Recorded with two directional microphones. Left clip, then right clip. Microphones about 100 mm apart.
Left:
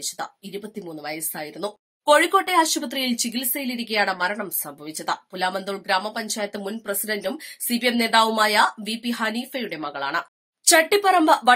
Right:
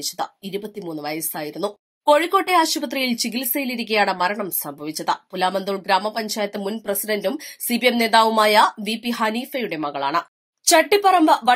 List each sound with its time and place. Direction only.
0.0 s speech: 30° right (ahead or behind)
4.8 s speech: 30° right (ahead or behind)
10.6 s speech: 20° right (ahead or behind)